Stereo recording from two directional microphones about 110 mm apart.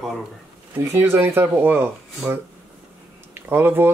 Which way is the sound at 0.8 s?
25° right (ahead or behind).